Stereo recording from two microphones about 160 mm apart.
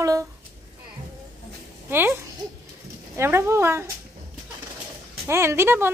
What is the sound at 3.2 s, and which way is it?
Speech, 15° right (ahead or behind).